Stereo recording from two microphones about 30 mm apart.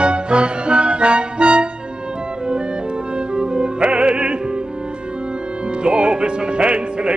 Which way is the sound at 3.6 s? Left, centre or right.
Right.